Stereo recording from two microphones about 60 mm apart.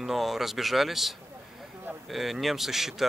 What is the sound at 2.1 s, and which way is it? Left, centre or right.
Speech, centre.